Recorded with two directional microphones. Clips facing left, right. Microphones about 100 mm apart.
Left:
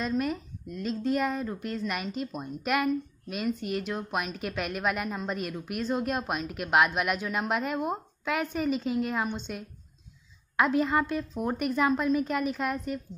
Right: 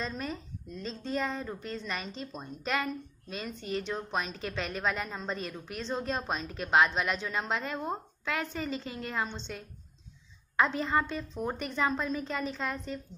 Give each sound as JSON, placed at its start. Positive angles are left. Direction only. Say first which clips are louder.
{"t": 0.0, "sound": "a woman's voice", "louder": "left 7 dB", "side_deg": 10}
{"t": 10.5, "sound": "a woman's voice", "louder": "left 3 dB", "side_deg": 10}